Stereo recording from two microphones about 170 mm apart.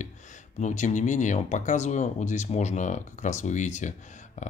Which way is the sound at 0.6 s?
45° left (ahead or behind).